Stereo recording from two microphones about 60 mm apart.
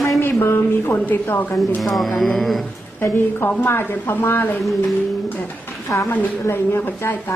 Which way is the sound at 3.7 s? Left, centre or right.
Left.